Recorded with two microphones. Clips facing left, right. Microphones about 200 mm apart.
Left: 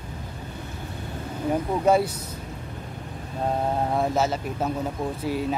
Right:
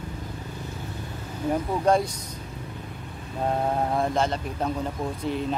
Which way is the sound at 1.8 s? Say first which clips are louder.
Left 2 dB; 5° left (ahead or behind).